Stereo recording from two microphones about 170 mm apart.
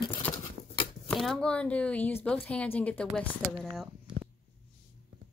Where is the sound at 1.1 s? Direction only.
Centre (ahead or behind).